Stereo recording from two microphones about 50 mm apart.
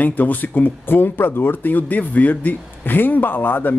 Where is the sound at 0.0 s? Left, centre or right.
Left.